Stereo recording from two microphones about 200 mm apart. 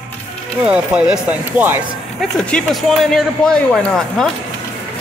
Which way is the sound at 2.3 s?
5° left (ahead or behind).